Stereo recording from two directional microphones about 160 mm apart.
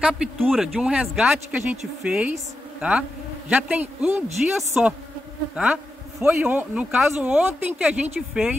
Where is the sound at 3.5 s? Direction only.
10° right (ahead or behind).